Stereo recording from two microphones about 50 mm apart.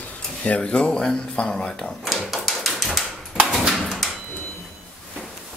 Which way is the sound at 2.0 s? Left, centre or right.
Centre.